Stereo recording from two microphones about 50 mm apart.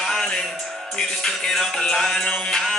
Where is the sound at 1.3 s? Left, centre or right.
Centre.